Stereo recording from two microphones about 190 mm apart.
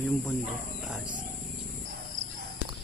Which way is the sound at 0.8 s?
5° right (ahead or behind).